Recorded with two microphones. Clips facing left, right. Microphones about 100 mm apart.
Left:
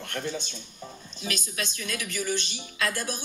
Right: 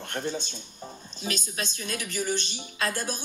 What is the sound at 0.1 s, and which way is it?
A woman's voice, 30° right (ahead or behind).